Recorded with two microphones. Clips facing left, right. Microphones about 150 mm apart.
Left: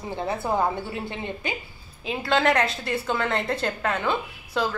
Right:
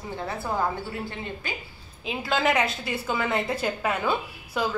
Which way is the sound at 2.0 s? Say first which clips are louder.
Left 3 dB; centre (ahead or behind).